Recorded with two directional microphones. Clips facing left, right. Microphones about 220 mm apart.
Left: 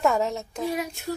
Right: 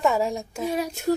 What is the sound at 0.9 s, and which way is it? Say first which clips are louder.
Speech: right 8 dB; 45° right (ahead or behind).